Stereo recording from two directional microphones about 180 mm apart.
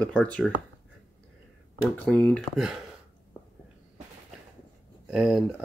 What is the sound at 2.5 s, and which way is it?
Speech, centre (ahead or behind).